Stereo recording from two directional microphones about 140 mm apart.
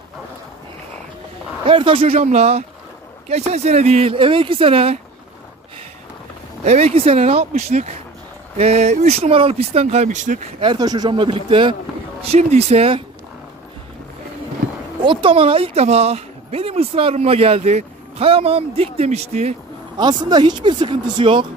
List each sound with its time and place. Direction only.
1.7 s a woman's voice: 40° right (ahead or behind)
6.6 s a woman's voice: 50° right (ahead or behind)
10.6 s speech: 30° right (ahead or behind)
12.2 s a woman's voice: 50° right (ahead or behind)
14.6 s a sound: 90° right
15.0 s a woman's voice: 40° right (ahead or behind)
20.0 s speech: 30° right (ahead or behind)